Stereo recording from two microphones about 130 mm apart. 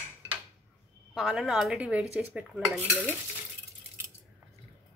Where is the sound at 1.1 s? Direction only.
Centre (ahead or behind).